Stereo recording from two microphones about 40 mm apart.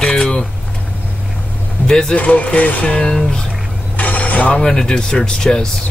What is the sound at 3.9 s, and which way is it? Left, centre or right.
Mechanisms, left.